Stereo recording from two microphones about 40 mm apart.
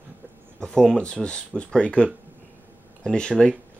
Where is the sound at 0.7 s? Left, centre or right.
Centre.